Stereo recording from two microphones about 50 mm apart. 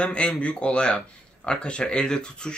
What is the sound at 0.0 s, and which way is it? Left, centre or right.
Speech, left.